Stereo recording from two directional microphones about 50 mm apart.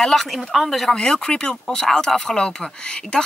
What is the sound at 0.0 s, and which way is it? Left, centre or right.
Speech, centre.